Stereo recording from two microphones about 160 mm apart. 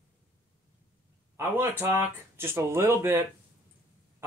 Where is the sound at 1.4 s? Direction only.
15° right (ahead or behind).